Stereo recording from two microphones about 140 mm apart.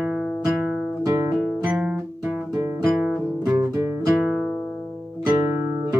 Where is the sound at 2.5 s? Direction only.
25° right (ahead or behind).